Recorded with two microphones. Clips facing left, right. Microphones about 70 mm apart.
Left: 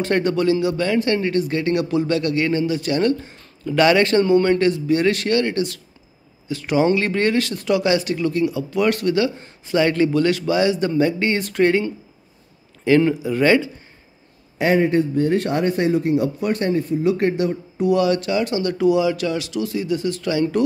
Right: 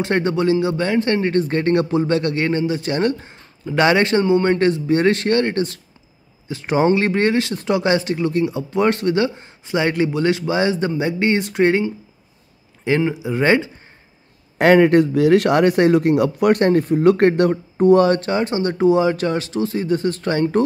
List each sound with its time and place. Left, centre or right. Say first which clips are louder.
0.0 s speech: even; right
13.0 s speech: left 1 dB; centre
14.6 s speech: right 5 dB; right
17.7 s speech: right 5 dB; right